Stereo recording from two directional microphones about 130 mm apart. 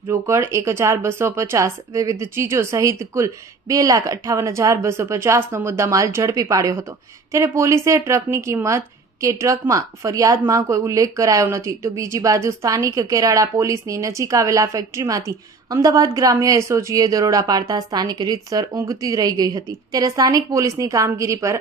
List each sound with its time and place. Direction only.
0.1 s speech: 20° right (ahead or behind)